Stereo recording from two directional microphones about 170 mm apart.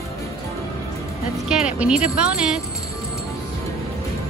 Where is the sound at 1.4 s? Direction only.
5° right (ahead or behind).